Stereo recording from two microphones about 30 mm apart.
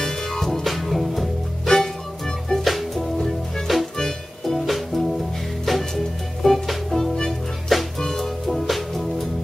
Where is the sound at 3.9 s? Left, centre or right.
Centre.